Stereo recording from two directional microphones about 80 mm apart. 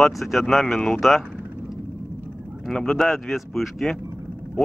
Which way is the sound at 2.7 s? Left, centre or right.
Centre.